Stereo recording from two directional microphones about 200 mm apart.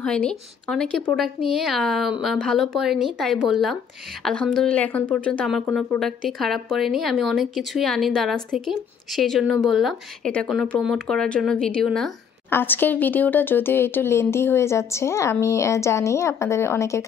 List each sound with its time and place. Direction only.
0.0 s speech: 5° left (ahead or behind)